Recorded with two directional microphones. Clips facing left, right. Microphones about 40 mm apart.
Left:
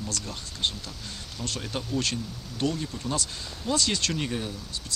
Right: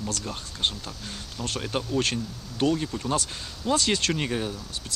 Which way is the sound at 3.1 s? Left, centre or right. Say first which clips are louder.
Right 3 dB; right.